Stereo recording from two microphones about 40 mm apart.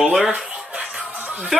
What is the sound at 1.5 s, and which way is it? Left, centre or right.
Speech, centre.